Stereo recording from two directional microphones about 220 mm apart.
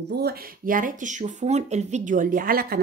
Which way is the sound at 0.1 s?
45° right (ahead or behind).